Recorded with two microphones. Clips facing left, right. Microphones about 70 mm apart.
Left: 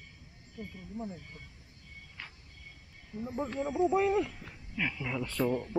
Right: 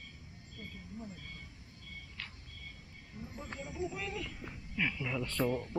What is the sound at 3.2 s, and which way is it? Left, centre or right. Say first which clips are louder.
Speech: left 11 dB; left.